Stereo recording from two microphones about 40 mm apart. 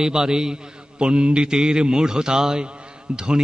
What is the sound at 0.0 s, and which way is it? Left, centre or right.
A man's voice, centre.